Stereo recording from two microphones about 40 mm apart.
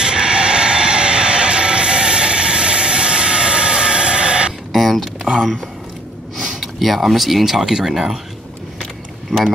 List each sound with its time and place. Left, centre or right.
0.0 s music: right
4.7 s mechanisms: centre
6.3 s speech: centre